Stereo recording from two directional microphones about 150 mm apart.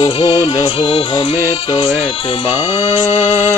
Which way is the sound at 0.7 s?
40° left (ahead or behind).